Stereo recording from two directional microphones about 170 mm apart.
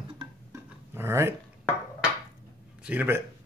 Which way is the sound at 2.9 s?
10° right (ahead or behind).